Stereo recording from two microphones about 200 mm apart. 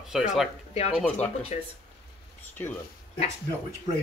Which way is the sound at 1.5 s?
35° left (ahead or behind).